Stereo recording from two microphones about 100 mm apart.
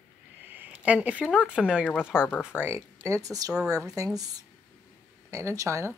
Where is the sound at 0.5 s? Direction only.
15° right (ahead or behind).